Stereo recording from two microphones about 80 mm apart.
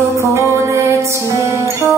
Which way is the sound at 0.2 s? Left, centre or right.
Right.